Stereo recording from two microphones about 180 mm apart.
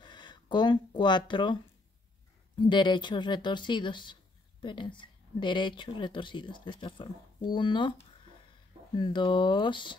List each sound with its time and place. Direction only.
0.0 s speech: 25° left (ahead or behind)
2.6 s speech: 25° left (ahead or behind)
8.9 s speech: 25° left (ahead or behind)